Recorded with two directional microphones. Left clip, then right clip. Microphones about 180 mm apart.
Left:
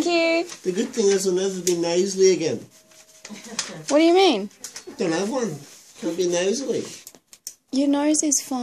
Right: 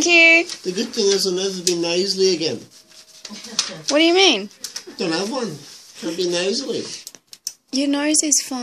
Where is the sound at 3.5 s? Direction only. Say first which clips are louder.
Right 2 dB; 15° left (ahead or behind).